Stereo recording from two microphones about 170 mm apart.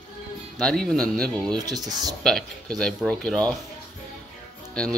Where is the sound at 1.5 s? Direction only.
20° right (ahead or behind).